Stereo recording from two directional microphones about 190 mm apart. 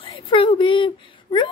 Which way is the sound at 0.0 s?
25° left (ahead or behind).